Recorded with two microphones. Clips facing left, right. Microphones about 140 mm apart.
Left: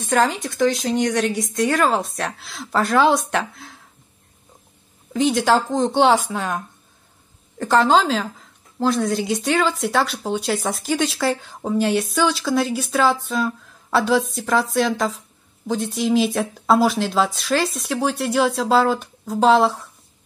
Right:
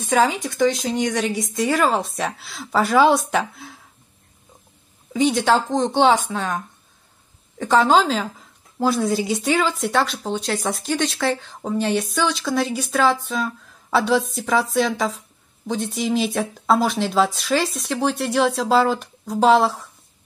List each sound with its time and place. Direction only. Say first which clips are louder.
0.0 s speech: right 1 dB; centre (ahead or behind)
5.1 s speech: even; centre (ahead or behind)